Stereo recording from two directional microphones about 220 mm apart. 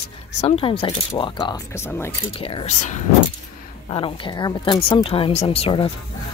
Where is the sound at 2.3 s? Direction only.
25° left (ahead or behind).